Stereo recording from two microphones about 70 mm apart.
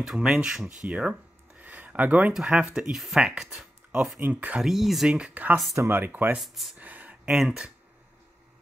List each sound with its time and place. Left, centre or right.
0.0 s speech: centre
1.6 s a sound: right
2.3 s speech: centre
4.2 s speech: right
4.6 s speech: centre
5.1 s speech: centre
6.4 s speech: centre
6.8 s a sound: right
7.2 s speech: centre